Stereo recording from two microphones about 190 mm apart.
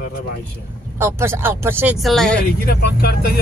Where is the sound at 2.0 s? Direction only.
Centre (ahead or behind).